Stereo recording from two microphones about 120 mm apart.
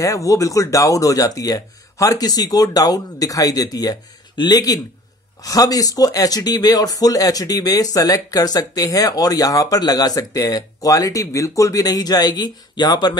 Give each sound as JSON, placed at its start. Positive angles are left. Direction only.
{"t": 0.0, "sound": "speech", "side_deg": 30}